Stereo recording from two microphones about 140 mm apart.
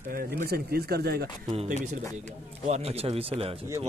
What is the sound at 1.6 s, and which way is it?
Speech, 65° right (ahead or behind).